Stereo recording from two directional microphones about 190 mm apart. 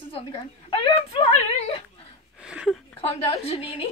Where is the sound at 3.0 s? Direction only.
30° left (ahead or behind).